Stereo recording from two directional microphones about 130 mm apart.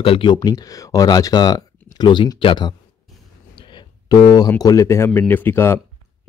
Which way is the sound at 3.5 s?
35° left (ahead or behind).